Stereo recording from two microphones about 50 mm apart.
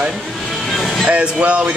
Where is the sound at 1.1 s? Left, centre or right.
Right.